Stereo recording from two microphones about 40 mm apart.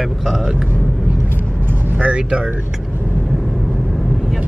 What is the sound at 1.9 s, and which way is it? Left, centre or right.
Speech, right.